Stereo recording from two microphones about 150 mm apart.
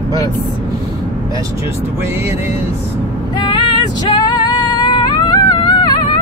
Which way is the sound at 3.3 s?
30° left (ahead or behind).